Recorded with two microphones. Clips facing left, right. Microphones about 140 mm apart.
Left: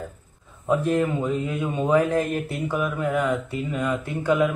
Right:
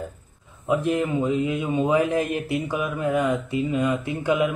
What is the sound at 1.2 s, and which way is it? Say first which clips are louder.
Speech: right 2 dB; 20° right (ahead or behind).